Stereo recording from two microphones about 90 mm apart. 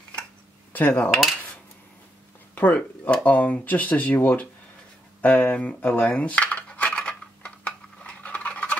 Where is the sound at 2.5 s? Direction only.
20° left (ahead or behind).